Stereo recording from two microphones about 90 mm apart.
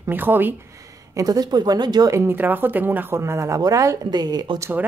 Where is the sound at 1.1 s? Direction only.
45° right (ahead or behind).